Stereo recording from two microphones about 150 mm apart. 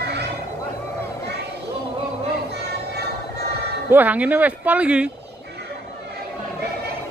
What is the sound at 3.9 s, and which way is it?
Speech, 10° right (ahead or behind).